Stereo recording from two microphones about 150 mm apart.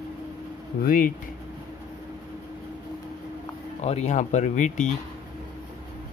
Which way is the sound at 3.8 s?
50° left (ahead or behind).